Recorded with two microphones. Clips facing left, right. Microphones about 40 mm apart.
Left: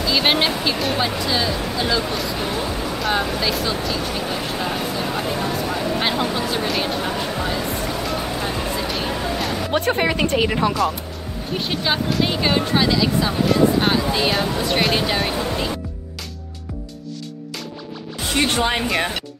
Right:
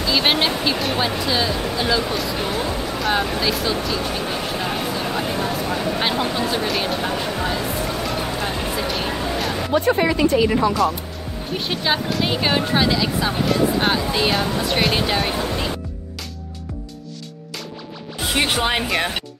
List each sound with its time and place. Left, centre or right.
0.0 s speech: centre
9.7 s speech: left
11.5 s speech: centre
18.2 s speech: centre
18.9 s speech: centre